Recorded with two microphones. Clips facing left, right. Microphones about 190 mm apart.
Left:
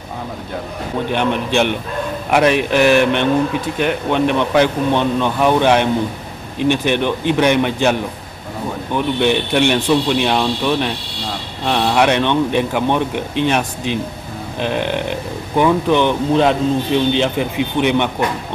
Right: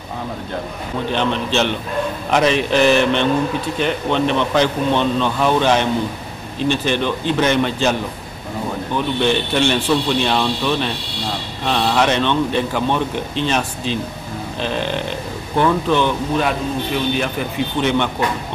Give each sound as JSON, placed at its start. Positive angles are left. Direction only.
{"t": 1.1, "sound": "speech", "side_deg": 15}